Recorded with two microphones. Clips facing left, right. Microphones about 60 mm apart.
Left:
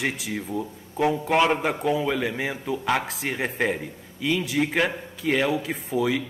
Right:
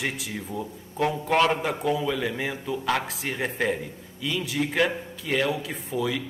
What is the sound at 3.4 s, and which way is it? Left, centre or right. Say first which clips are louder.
A man's voice: even; centre.